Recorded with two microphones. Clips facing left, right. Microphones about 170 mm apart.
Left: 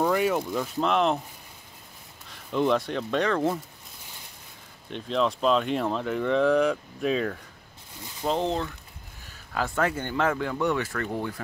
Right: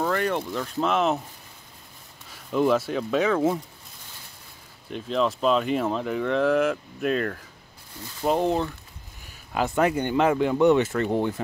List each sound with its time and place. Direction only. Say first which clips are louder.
0.0 s speech: left 1 dB; 10° left (ahead or behind)
0.8 s speech: right 1 dB; centre (ahead or behind)
2.2 s speech: right 2 dB; 5° right (ahead or behind)
4.8 s speech: right 1 dB; centre (ahead or behind)
8.2 s speech: right 4 dB; 10° right (ahead or behind)